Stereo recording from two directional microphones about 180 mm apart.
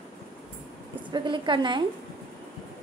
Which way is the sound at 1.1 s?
25° right (ahead or behind).